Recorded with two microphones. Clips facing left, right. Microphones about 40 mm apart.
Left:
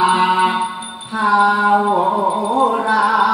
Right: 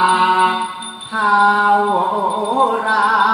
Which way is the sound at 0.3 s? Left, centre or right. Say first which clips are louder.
Right 1 dB; right.